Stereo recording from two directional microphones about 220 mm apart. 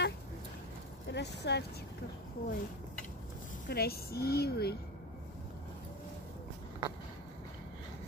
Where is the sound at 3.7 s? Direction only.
45° left (ahead or behind).